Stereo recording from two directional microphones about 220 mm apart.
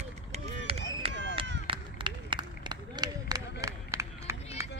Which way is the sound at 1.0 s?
25° right (ahead or behind).